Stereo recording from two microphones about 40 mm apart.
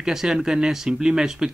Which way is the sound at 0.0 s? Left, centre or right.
Centre.